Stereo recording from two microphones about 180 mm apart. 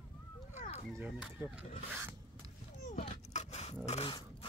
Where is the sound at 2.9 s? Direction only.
35° left (ahead or behind).